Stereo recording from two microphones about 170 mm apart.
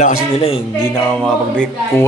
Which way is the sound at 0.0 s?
45° left (ahead or behind).